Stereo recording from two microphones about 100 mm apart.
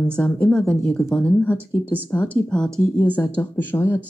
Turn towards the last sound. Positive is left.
turn(degrees=20)  # may be behind; listen again after turning